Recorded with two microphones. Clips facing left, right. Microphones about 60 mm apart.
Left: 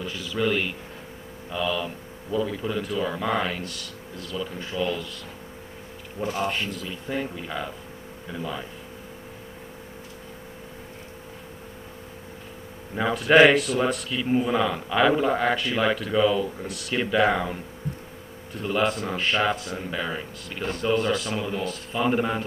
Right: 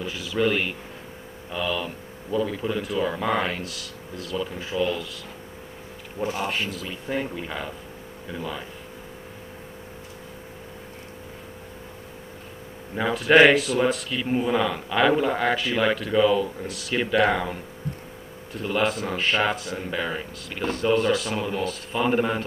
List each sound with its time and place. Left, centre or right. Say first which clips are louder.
0.0 s speech: right 2 dB; centre
6.2 s speech: even; centre
6.9 s speech: right 1 dB; centre
8.3 s speech: even; centre
13.3 s speech: even; centre
14.4 s speech: even; centre
15.1 s speech: even; centre
15.5 s speech: right 1 dB; centre
16.3 s speech: right 1 dB; right
17.1 s speech: even; centre
18.6 s speech: even; centre